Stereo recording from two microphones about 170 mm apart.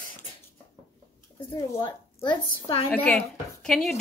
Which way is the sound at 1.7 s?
15° left (ahead or behind).